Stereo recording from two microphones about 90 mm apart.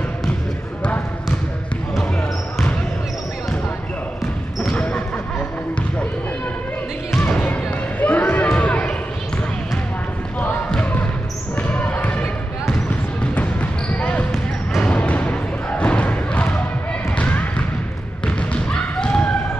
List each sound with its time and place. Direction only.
4.6 s basketball bounce: 10° left (ahead or behind)
7.2 s basketball bounce: 20° left (ahead or behind)
8.0 s a sound: 20° left (ahead or behind)
10.7 s basketball bounce: 15° left (ahead or behind)
14.8 s thump: 15° left (ahead or behind)
17.2 s bouncing: 15° left (ahead or behind)
18.2 s basketball bounce: 10° left (ahead or behind)